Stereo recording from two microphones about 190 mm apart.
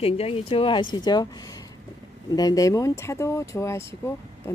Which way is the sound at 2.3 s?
20° left (ahead or behind).